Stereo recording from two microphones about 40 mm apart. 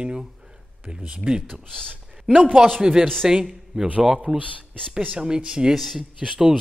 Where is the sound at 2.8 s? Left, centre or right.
Centre.